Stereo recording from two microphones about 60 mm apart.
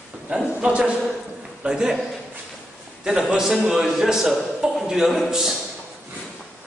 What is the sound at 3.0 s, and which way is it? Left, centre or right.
Speech, centre.